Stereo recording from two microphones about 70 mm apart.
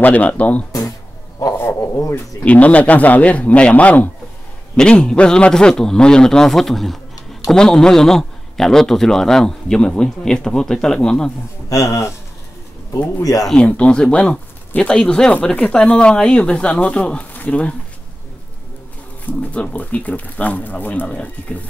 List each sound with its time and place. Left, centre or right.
0.0 s speech: left
1.8 s speech: left
2.4 s speech: left
4.7 s a man's voice: centre
11.7 s speech: left
13.2 s speech: left
13.6 s a man's voice: centre
19.5 s speech: left